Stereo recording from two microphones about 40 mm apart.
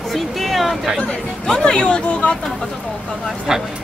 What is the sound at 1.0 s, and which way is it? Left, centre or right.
Speech, left.